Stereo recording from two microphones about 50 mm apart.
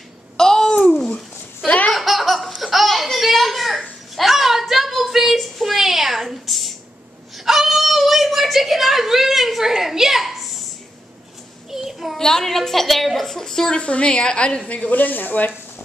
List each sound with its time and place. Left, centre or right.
0.4 s babbling: centre
0.9 s a sound: centre
1.9 s laughter: centre
2.6 s babbling: centre
4.1 s a sound: centre
11.7 s child singing: centre
12.2 s a sound: centre
13.7 s a woman's voice: left
14.7 s speech: left